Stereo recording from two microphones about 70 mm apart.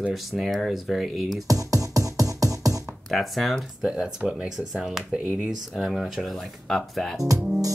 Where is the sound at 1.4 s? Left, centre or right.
Right.